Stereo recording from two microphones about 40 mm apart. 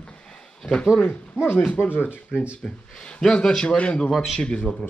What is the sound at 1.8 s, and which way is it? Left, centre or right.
Speech, left.